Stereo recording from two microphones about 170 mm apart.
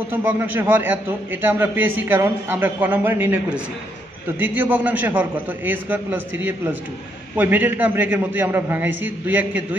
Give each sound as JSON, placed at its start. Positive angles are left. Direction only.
{"t": 0.1, "sound": "a man's voice", "side_deg": -10}